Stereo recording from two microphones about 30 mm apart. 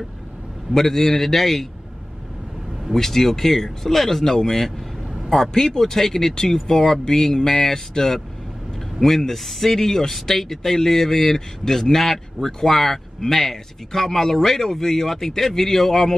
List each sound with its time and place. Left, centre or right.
0.7 s speech: centre
2.9 s speech: centre
4.2 s speech: centre